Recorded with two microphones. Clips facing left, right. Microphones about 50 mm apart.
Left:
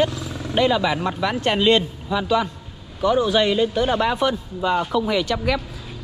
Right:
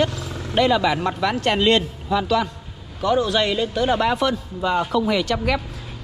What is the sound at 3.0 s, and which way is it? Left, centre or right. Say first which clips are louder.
Speech: left 1 dB; centre.